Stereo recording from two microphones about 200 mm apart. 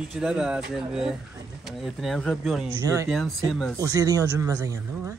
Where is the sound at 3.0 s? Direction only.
Centre (ahead or behind).